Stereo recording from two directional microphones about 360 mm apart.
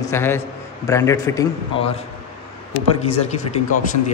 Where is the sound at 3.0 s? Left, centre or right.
Centre.